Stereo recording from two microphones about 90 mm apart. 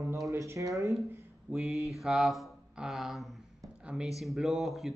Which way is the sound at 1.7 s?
35° left (ahead or behind).